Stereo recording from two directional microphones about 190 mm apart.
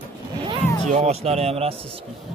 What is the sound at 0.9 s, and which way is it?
Speech, 35° right (ahead or behind).